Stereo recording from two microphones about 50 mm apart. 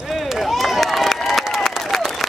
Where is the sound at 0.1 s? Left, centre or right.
Centre.